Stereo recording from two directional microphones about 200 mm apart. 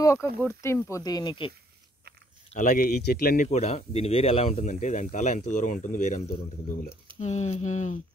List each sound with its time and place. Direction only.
0.0 s a sound: 15° left (ahead or behind)
0.4 s speech: 10° left (ahead or behind)
2.6 s speech: 50° left (ahead or behind)
3.4 s speech: 30° left (ahead or behind)